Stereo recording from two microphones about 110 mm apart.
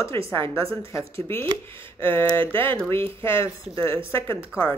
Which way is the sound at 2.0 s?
20° left (ahead or behind).